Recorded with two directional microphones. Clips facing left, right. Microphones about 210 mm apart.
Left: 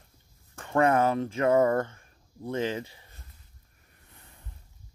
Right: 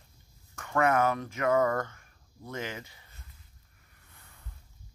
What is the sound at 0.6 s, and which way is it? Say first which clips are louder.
Speech: left 3 dB; 30° left (ahead or behind).